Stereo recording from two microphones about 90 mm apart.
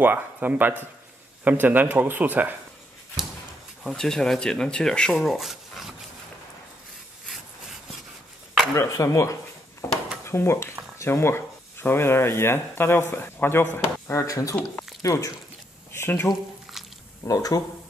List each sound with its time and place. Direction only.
0.0 s speech: 20° right (ahead or behind)
3.8 s speech: 5° left (ahead or behind)
8.7 s drawer open or close: 35° left (ahead or behind)
11.0 s speech: 25° left (ahead or behind)
15.9 s speech: 25° left (ahead or behind)
16.7 s squish: 5° right (ahead or behind)
17.2 s speech: 40° left (ahead or behind)